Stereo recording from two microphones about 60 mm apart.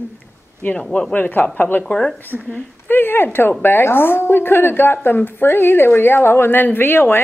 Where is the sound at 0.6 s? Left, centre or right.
Left.